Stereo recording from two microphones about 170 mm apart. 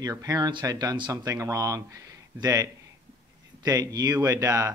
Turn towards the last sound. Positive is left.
turn(degrees=-20)  # may be behind; listen again after turning